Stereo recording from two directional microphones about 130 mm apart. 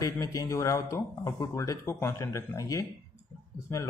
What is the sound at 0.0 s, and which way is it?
Speech, 25° left (ahead or behind).